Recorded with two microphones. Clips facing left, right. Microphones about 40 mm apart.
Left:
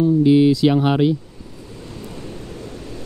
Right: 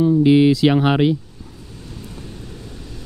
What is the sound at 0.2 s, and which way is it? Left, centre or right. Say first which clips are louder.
Speech: even; right.